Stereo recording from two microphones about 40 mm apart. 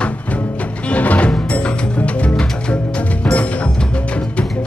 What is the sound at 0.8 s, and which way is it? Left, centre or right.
Music, left.